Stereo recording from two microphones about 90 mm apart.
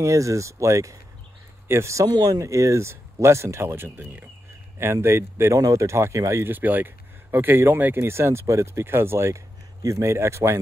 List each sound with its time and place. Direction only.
0.0 s speech: 35° right (ahead or behind)
2.0 s speech: 45° right (ahead or behind); by 10.6 s 30° right (ahead or behind)